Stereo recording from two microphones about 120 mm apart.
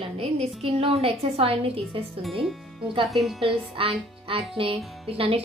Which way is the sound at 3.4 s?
50° right (ahead or behind).